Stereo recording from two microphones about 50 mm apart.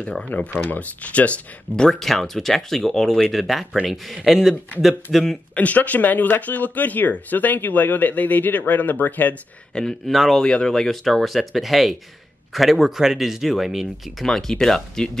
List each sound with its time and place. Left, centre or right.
0.3 s speech: left
0.7 s speech: left
1.9 s speech: centre
5.5 s speech: left
10.0 s speech: centre
10.4 s speech: centre
14.2 s speech: centre